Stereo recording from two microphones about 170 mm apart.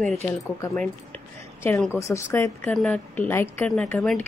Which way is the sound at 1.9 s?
15° left (ahead or behind).